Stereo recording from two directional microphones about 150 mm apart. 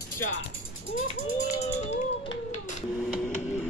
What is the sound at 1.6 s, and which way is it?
Music, 45° left (ahead or behind).